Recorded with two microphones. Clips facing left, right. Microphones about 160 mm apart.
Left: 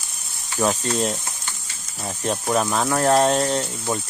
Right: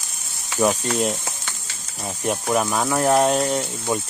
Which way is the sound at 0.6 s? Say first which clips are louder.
Right 1 dB; 10° right (ahead or behind).